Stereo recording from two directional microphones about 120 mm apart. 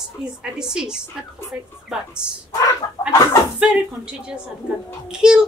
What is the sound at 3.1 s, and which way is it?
Chicken, 25° left (ahead or behind).